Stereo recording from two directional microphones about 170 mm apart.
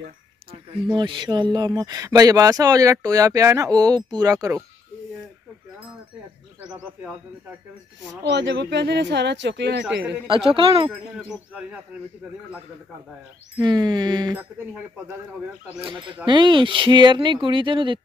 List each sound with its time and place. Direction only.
0.5 s speech: 25° right (ahead or behind)
6.6 s speech: 5° right (ahead or behind)
8.3 s speech: 85° right
10.2 s a woman's voice: 30° right (ahead or behind)
10.9 s speech: centre (ahead or behind)
13.6 s speech: 25° right (ahead or behind)
15.8 s speech: 30° right (ahead or behind)